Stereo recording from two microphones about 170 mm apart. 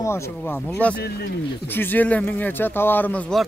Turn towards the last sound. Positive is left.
turn(degrees=5)  # may be behind; listen again after turning